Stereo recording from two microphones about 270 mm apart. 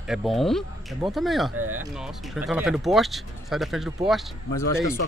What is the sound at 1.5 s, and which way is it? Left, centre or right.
Speech, right.